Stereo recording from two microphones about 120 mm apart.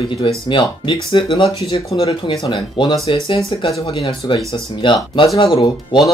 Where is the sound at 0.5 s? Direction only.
45° left (ahead or behind).